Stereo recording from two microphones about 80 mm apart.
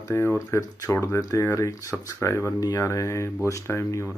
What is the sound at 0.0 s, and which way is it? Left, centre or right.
Speech, left.